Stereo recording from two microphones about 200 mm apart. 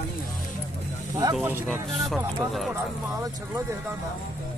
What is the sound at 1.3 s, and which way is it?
Speech, 10° right (ahead or behind).